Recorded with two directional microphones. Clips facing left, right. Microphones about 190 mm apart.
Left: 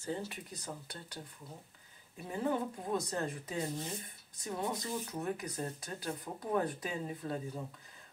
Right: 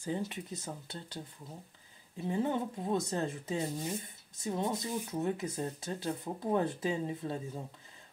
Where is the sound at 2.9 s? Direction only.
25° right (ahead or behind).